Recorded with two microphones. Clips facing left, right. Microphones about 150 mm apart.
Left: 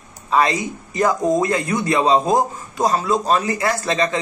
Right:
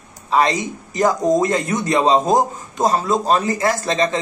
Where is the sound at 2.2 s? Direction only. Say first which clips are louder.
Right 1 dB; centre (ahead or behind).